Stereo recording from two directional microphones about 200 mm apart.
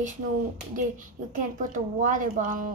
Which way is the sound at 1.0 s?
40° right (ahead or behind).